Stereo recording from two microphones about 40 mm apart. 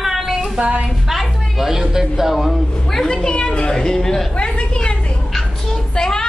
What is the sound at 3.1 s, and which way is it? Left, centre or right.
A woman's voice, left.